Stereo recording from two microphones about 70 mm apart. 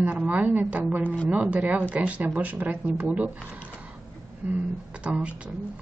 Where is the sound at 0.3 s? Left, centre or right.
Right.